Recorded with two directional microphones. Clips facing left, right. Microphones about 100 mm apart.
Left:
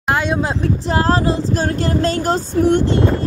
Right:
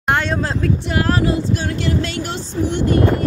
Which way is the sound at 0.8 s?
35° left (ahead or behind).